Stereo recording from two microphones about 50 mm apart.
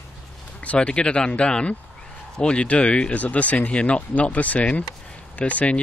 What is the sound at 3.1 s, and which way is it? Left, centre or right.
Speech, left.